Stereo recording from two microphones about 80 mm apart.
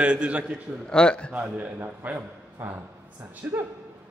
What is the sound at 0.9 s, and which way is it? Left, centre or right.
Speech, centre.